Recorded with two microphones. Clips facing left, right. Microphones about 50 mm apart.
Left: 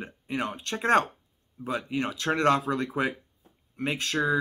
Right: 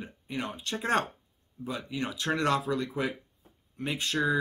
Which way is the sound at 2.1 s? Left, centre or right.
Left.